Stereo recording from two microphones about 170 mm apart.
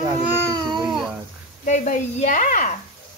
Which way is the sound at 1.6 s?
45° left (ahead or behind).